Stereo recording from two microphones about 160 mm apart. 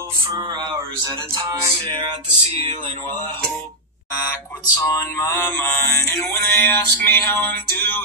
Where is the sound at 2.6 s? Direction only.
35° right (ahead or behind).